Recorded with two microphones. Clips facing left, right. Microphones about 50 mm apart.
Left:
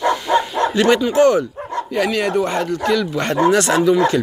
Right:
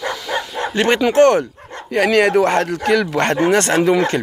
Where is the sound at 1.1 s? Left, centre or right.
Right.